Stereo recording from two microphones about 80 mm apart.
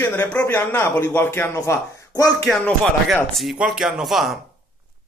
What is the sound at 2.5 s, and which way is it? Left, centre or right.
Speech, centre.